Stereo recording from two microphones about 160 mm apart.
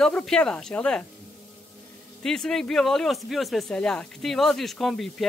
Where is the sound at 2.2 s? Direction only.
5° left (ahead or behind).